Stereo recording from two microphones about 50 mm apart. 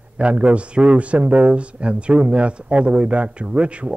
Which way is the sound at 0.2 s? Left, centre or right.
Right.